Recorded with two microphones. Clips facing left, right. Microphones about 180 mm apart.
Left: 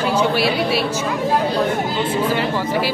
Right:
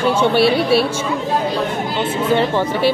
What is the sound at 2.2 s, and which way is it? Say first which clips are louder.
Speech: right 4 dB; 25° right (ahead or behind).